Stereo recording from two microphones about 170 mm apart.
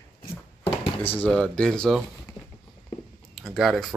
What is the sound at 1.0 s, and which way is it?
Speech, 10° left (ahead or behind).